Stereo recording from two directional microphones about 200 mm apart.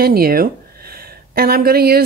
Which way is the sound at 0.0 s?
50° right (ahead or behind).